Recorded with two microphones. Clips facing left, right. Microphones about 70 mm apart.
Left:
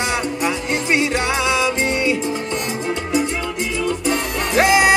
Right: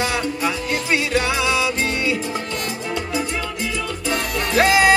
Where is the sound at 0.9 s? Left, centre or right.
Left.